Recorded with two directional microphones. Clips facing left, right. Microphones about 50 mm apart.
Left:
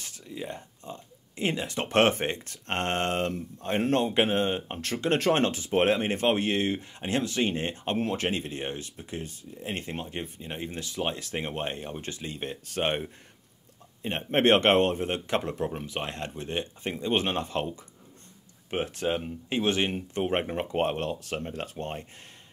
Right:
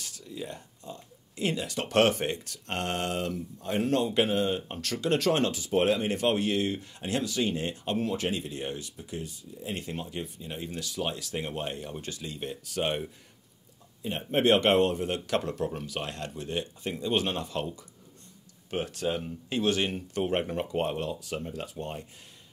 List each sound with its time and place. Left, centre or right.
0.0 s speech: left